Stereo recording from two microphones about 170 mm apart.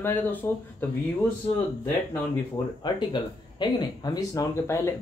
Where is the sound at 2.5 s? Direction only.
25° left (ahead or behind).